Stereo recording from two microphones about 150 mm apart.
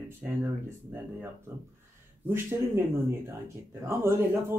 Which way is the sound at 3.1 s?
15° right (ahead or behind).